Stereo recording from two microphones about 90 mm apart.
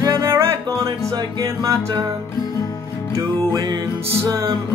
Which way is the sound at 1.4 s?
35° right (ahead or behind).